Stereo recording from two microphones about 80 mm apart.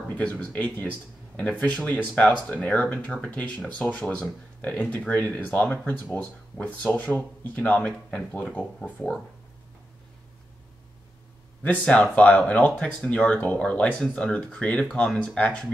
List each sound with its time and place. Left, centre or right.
0.1 s speech: centre
11.9 s speech: centre